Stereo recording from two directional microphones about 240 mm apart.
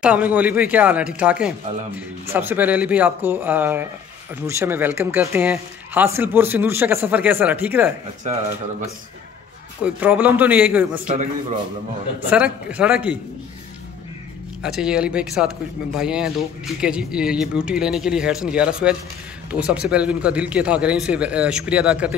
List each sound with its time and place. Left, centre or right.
0.0 s speech: centre
9.8 s speech: centre
11.1 s a man's voice: right
12.3 s speech: centre
14.6 s speech: centre